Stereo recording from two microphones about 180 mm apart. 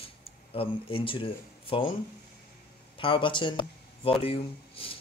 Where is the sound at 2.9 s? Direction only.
30° left (ahead or behind).